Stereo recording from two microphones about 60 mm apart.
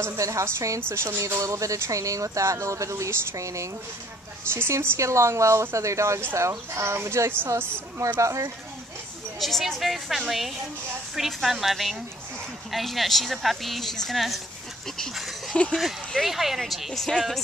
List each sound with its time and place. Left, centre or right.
0.0 s speech: right
0.7 s speech: right
3.3 s speech: right
4.6 s speech: right
8.2 s speech: right
9.4 s speech: centre
15.0 s a sound: centre
15.7 s speech: centre